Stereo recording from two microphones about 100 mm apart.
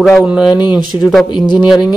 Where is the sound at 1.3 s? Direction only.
50° left (ahead or behind).